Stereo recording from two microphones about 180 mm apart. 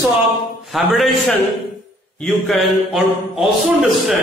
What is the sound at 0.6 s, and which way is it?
A man's voice, centre (ahead or behind).